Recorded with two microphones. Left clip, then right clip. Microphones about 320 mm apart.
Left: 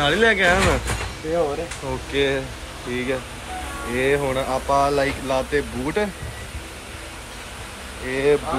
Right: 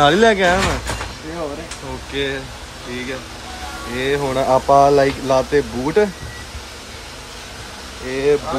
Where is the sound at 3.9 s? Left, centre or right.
Centre.